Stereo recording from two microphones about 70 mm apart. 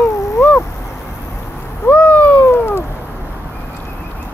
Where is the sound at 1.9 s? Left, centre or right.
Left.